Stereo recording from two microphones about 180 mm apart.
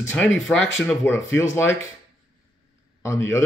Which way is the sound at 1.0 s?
15° left (ahead or behind).